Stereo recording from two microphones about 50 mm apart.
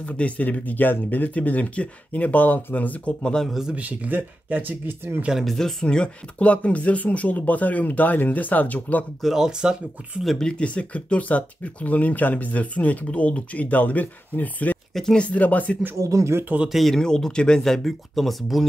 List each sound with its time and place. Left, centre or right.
0.0 s speech: left
3.7 s speech: right
5.4 s speech: centre
5.9 s speech: left
9.2 s speech: centre
10.4 s speech: left
16.0 s speech: right
16.6 s speech: centre
16.9 s speech: centre